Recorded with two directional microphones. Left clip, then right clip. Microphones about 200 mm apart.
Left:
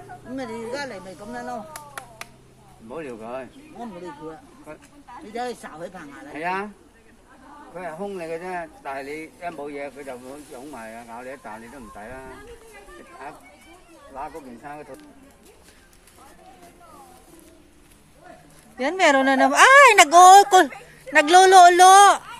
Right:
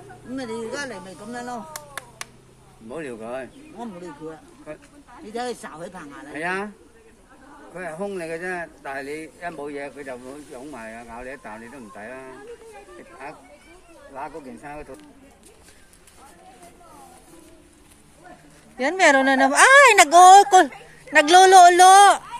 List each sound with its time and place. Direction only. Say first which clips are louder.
0.4 s speech: right 1 dB; 55° right (ahead or behind)
2.9 s speech: right 1 dB; 55° right (ahead or behind)
7.7 s speech: right 2 dB; 60° right (ahead or behind)
14.1 s speech: even; 55° right (ahead or behind)
18.8 s a woman's voice: right 1 dB; 5° right (ahead or behind)